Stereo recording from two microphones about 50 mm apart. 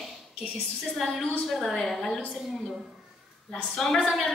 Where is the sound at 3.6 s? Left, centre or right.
Centre.